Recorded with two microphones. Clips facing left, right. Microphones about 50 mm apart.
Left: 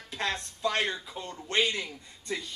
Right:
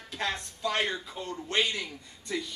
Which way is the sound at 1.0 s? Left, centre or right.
Centre.